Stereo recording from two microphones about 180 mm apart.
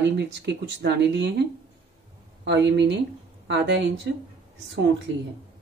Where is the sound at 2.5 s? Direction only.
75° right (ahead or behind).